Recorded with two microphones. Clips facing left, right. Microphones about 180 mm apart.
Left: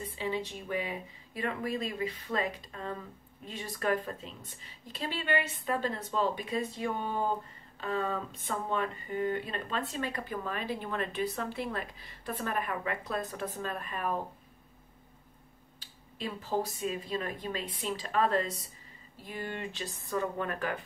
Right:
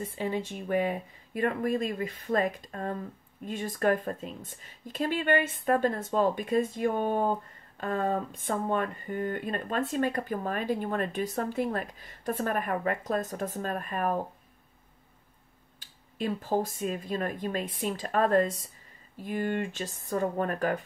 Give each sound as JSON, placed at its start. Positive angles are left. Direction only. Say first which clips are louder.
{"t": 0.0, "sound": "a woman's voice", "louder": "right 3 dB", "side_deg": -50}
{"t": 15.8, "sound": "a woman's voice", "louder": "right 6 dB", "side_deg": -50}